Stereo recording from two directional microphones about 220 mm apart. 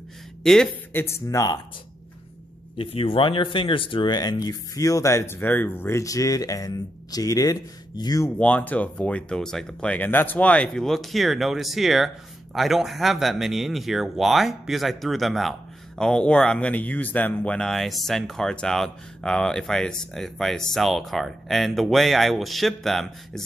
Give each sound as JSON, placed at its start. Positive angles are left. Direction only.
{"t": 0.4, "sound": "speech", "side_deg": 0}
{"t": 2.8, "sound": "speech", "side_deg": 25}
{"t": 8.4, "sound": "speech", "side_deg": 5}